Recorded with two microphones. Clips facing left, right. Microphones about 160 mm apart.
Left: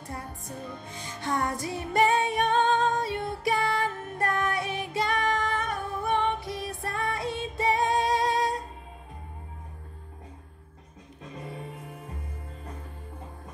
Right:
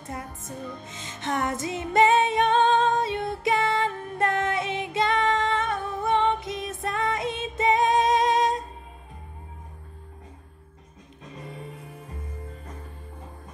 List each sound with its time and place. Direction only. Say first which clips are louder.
0.4 s music: right 2 dB; 20° right (ahead or behind)